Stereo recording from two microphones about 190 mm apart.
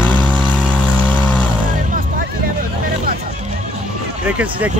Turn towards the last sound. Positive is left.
turn(degrees=-5)  # may be behind; listen again after turning